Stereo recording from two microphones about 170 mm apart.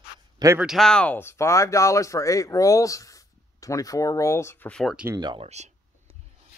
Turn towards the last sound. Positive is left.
turn(degrees=-40)  # may be behind; listen again after turning